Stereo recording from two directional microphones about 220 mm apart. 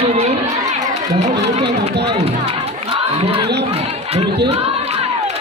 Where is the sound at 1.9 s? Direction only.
50° right (ahead or behind).